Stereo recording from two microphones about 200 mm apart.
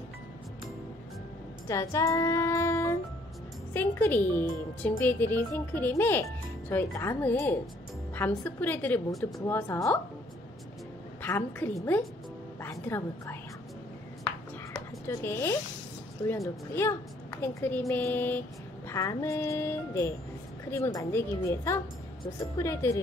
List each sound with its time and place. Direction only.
1.7 s child singing: 15° left (ahead or behind)
3.7 s a woman's voice: 10° left (ahead or behind)
11.2 s a woman's voice: 10° left (ahead or behind)
14.2 s a sound: 10° left (ahead or behind)
16.3 s a woman's voice: 15° left (ahead or behind)